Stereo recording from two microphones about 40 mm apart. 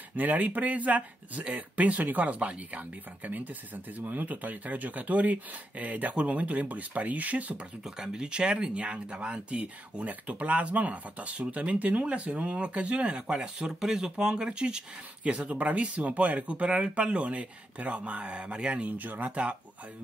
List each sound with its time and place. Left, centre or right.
0.1 s speech: right
7.8 s speech: centre
13.4 s speech: centre
18.8 s speech: right